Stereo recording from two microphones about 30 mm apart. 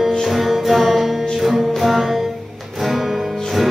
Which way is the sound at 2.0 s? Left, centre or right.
Centre.